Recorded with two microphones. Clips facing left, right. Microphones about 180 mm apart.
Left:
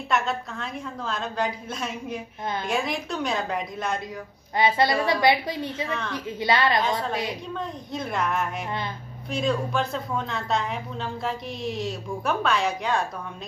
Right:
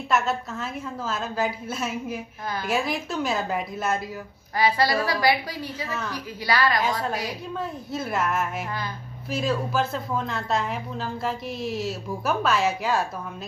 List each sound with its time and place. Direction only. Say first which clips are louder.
0.1 s a woman's voice: right 2 dB; centre (ahead or behind)
4.6 s a woman's voice: left 1 dB; 20° left (ahead or behind)
5.9 s a woman's voice: left 1 dB; 5° right (ahead or behind)
6.1 s a woman's voice: left 2 dB; 25° left (ahead or behind)
7.5 s a woman's voice: right 1 dB; 5° right (ahead or behind)